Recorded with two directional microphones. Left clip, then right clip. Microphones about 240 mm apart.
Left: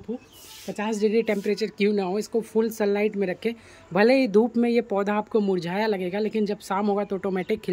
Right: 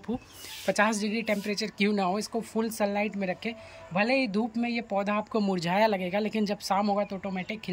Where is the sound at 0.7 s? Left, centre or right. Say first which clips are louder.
Left 5 dB; centre.